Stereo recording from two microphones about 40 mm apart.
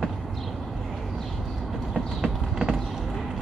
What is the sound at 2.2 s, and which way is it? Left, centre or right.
Clip-clop, centre.